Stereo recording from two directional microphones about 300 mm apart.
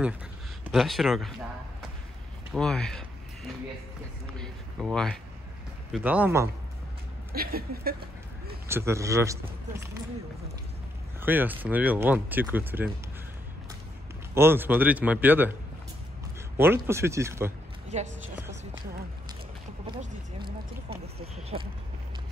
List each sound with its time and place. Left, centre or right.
0.7 s speech: centre
2.5 s speech: centre
4.4 s speech: centre
7.3 s speech: right
8.6 s speech: centre
11.1 s speech: centre
14.3 s speech: centre
16.5 s speech: centre
20.0 s speech: right